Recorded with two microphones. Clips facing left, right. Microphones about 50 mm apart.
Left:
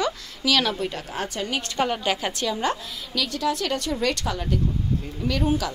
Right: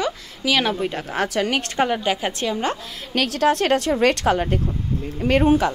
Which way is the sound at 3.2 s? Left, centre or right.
Right.